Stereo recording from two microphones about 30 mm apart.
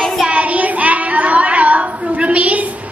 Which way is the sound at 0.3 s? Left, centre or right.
Right.